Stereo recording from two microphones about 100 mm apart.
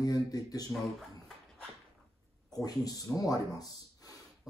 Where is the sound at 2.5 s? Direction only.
40° left (ahead or behind).